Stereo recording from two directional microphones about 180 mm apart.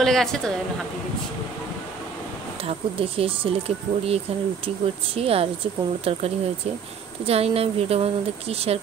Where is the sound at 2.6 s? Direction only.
30° right (ahead or behind).